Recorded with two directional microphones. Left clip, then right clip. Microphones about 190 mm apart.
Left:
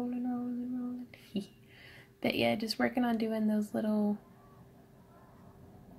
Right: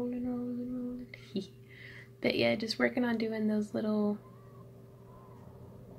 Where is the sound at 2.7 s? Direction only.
30° left (ahead or behind).